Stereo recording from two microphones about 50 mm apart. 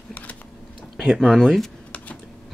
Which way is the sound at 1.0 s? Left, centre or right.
Centre.